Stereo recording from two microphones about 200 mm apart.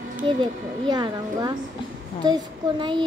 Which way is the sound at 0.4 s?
20° right (ahead or behind).